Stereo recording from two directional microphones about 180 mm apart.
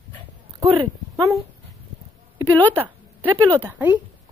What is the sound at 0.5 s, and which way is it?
Speech, 20° right (ahead or behind).